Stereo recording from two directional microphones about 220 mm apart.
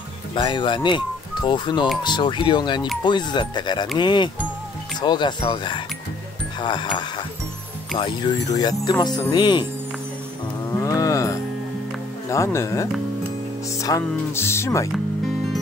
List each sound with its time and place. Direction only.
0.3 s speech: 20° left (ahead or behind)
10.8 s cattle: 15° left (ahead or behind)
12.3 s music: 15° left (ahead or behind)
14.9 s music: centre (ahead or behind)